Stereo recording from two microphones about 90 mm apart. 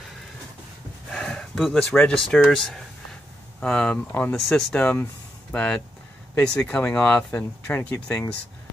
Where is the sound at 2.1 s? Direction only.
5° left (ahead or behind).